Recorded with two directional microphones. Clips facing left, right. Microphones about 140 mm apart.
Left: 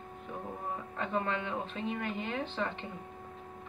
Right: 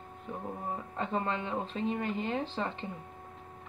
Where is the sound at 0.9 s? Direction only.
30° right (ahead or behind).